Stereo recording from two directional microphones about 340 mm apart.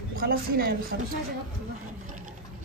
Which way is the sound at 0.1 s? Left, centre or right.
Right.